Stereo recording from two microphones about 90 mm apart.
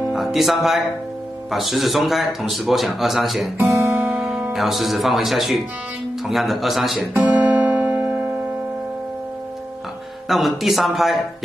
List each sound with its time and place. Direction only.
0.1 s speech: centre (ahead or behind)
3.5 s speech: 20° right (ahead or behind)
4.1 s speech: 5° right (ahead or behind)
7.0 s guitar: 15° right (ahead or behind)
10.2 s speech: centre (ahead or behind)